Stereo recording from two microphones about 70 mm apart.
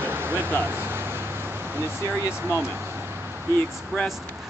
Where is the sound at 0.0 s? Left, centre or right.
Right.